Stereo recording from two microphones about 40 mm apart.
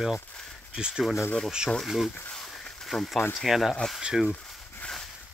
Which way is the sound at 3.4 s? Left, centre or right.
Centre.